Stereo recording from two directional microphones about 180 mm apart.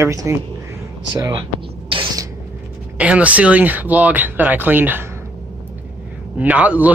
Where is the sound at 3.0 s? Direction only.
5° right (ahead or behind).